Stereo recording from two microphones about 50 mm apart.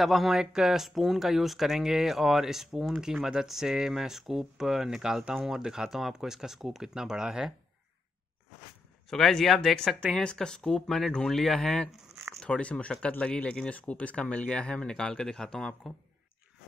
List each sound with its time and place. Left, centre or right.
0.0 s speech: centre
9.1 s speech: centre
12.4 s speech: left